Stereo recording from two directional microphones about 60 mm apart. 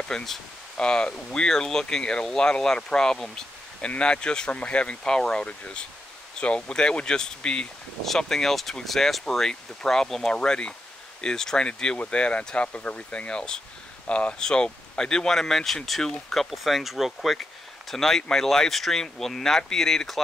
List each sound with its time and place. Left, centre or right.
0.1 s speech: centre
0.7 s speech: centre